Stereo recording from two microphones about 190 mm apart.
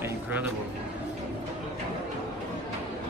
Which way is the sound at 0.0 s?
10° right (ahead or behind).